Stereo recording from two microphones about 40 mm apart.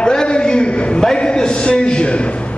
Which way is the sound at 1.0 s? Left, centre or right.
Left.